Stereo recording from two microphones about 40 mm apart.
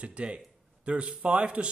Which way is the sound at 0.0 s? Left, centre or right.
Right.